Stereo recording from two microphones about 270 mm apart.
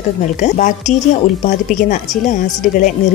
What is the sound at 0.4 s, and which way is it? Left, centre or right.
Speech, left.